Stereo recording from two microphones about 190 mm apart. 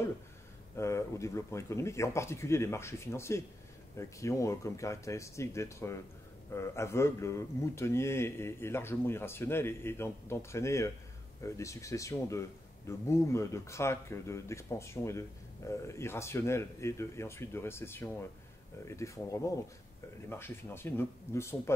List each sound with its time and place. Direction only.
0.7 s speech: 15° left (ahead or behind)